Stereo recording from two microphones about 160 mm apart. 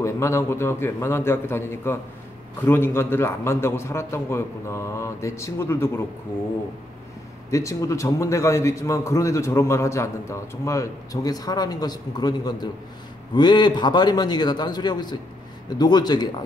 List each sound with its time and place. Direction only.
0.0 s a man's voice: 15° left (ahead or behind)
7.5 s a man's voice: 20° left (ahead or behind)